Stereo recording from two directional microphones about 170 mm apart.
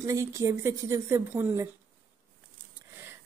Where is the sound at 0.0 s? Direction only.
20° right (ahead or behind).